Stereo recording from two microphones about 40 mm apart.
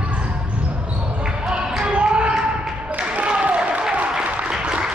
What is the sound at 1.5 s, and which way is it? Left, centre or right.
Basketball bounce, centre.